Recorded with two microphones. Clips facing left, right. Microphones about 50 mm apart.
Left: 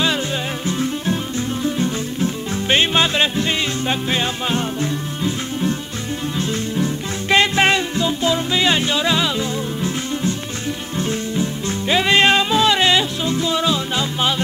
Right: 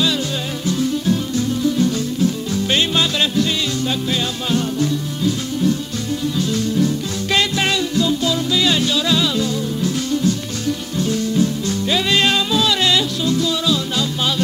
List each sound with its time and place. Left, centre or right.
0.7 s music: left